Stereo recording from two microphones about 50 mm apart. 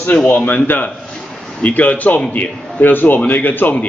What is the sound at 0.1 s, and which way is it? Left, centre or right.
Speech, left.